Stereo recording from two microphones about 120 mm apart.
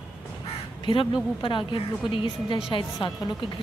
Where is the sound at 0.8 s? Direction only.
40° left (ahead or behind).